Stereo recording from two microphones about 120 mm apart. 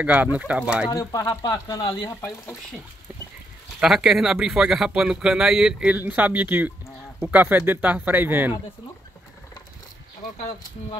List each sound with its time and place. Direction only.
0.0 s speech: 10° right (ahead or behind)
0.8 s speech: 30° left (ahead or behind)
3.8 s speech: 5° right (ahead or behind)